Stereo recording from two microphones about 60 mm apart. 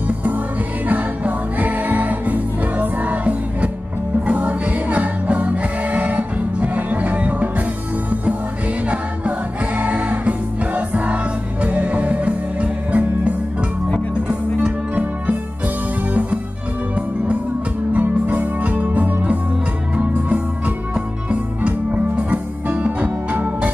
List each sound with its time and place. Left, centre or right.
0.8 s music: right
9.8 s music: right
14.6 s music: right
17.9 s music: right